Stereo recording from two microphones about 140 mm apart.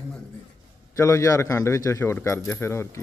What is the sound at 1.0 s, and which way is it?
Speech, 20° left (ahead or behind).